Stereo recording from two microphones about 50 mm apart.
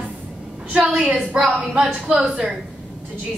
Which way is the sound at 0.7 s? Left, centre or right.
Right.